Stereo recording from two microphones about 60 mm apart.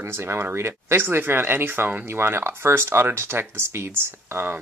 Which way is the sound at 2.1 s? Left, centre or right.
Right.